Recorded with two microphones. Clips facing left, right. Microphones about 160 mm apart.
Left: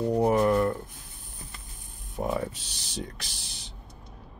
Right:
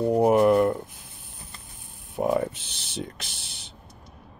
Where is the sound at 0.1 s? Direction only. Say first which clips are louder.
Right 4 dB; 20° right (ahead or behind).